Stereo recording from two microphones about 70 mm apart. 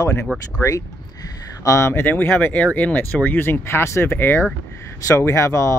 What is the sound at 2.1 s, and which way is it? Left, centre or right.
Speech, left.